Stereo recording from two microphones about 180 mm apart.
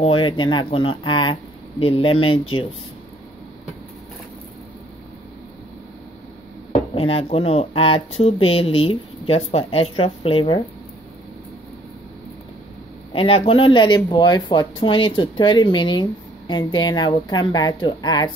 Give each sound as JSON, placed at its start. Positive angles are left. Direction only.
{"t": 0.0, "sound": "speech", "side_deg": 30}
{"t": 6.7, "sound": "speech", "side_deg": 35}
{"t": 13.1, "sound": "speech", "side_deg": 30}